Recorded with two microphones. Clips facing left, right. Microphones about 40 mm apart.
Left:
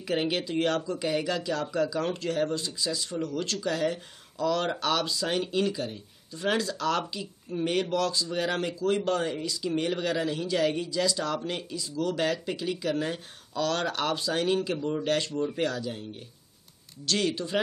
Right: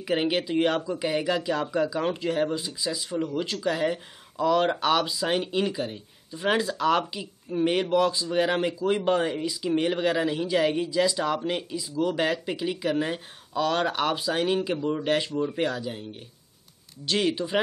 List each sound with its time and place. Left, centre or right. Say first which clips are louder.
0.0 s speech: right 3 dB; centre